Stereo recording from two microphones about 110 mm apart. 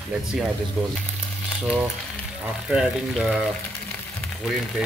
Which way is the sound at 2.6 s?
5° right (ahead or behind).